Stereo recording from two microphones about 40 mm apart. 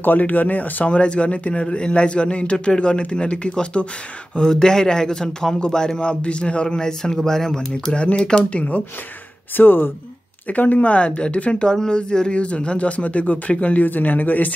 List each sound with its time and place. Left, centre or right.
0.0 s speech: left
0.9 s a man's voice: left
4.4 s a man's voice: centre
7.9 s a man's voice: left
9.6 s speech: left
10.5 s speech: left
13.8 s speech: left